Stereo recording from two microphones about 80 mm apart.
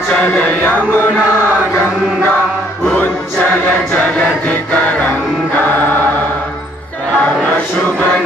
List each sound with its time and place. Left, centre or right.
0.1 s music: centre
5.0 s music: left
7.2 s music: centre